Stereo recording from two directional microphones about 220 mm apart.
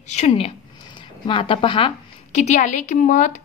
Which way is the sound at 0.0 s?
30° left (ahead or behind).